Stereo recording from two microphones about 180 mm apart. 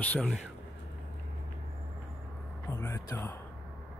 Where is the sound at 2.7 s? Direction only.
15° left (ahead or behind).